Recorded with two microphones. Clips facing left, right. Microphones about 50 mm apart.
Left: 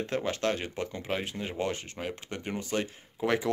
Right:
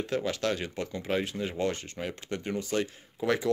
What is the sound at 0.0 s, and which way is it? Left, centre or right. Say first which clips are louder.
Speech: even; left.